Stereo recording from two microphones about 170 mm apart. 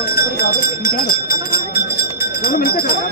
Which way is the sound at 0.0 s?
65° left (ahead or behind).